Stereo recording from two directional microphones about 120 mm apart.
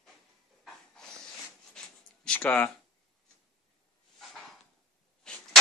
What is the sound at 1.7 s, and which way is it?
Writing, 10° left (ahead or behind).